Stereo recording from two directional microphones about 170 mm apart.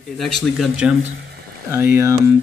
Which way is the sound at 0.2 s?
Centre (ahead or behind).